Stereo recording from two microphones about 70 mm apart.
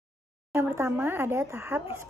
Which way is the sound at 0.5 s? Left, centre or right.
Right.